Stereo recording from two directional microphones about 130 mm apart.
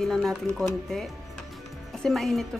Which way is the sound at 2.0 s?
Centre (ahead or behind).